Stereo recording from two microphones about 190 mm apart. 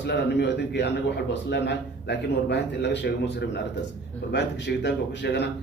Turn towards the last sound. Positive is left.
turn(degrees=65)  # may be behind; listen again after turning